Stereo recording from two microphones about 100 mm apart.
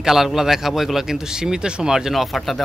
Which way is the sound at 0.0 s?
Centre (ahead or behind).